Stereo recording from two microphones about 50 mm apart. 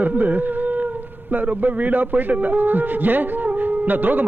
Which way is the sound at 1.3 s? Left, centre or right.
Right.